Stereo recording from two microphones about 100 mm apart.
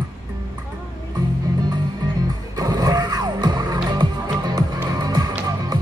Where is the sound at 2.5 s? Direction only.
40° right (ahead or behind).